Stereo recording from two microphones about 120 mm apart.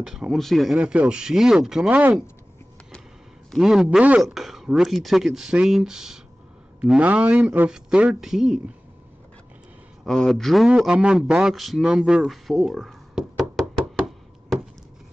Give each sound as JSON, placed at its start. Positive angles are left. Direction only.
{"t": 0.0, "sound": "speech", "side_deg": -5}
{"t": 0.7, "sound": "a man's voice", "side_deg": -10}
{"t": 3.5, "sound": "a man's voice", "side_deg": 0}
{"t": 10.0, "sound": "a man's voice", "side_deg": 5}